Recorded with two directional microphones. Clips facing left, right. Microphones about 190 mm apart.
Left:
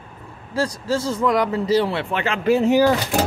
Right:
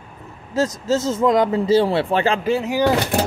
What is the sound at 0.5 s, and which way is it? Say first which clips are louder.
Speech: right 3 dB; 20° right (ahead or behind).